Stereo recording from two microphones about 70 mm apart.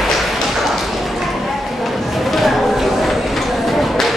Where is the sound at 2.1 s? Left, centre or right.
Centre.